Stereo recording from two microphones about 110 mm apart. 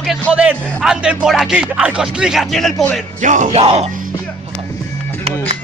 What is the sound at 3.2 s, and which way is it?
Music, 70° right (ahead or behind).